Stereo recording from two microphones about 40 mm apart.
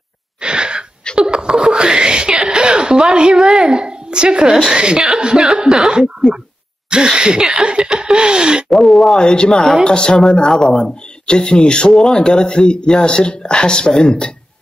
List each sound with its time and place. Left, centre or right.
0.4 s wheeze: right
1.3 s wail: centre
3.3 s a woman's voice: centre
3.6 s a child's voice: right
4.6 s a woman's voice: centre
6.9 s chuckle: right
8.6 s speech: centre
9.2 s speech: left